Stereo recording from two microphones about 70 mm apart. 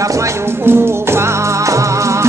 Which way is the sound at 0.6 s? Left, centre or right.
Right.